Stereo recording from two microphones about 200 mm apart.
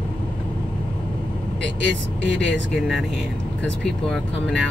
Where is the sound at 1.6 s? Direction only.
60° left (ahead or behind).